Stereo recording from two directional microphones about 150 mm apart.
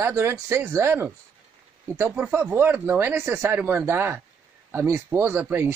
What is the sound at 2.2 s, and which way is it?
Speech, 10° right (ahead or behind).